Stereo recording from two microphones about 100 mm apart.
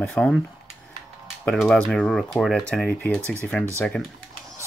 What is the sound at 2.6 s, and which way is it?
Speech, 10° left (ahead or behind).